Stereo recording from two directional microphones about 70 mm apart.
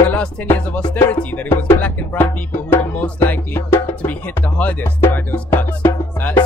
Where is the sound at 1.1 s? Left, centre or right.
Left.